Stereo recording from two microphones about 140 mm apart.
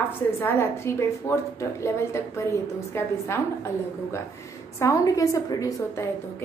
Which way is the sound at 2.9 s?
20° left (ahead or behind).